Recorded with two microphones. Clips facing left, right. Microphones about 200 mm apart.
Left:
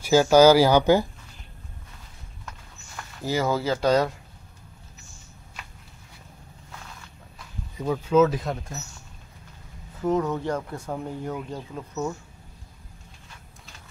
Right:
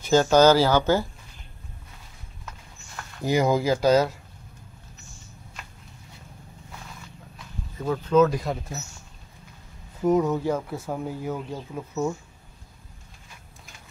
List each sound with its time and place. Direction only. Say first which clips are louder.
0.0 s speech: left 2 dB; 10° left (ahead or behind)
3.2 s speech: right 3 dB; 15° right (ahead or behind)
7.7 s speech: even; 10° left (ahead or behind)
10.0 s speech: right 3 dB; 10° right (ahead or behind)